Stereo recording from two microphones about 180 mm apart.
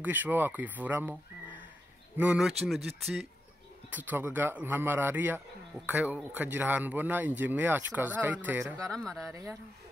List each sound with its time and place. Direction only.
0.0 s speech: 10° right (ahead or behind)
8.9 s speech: 5° left (ahead or behind)
9.2 s speech: 15° right (ahead or behind)